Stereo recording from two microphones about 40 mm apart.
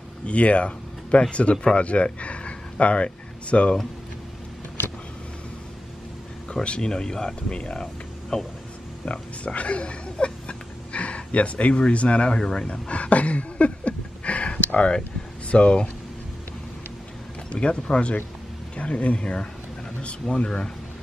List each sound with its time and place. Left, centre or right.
0.3 s speech: left
6.6 s speech: left
9.0 s speech: left
10.9 s a sound: left
11.9 s speech: left
12.8 s a sound: left
15.4 s speech: left
17.5 s speech: left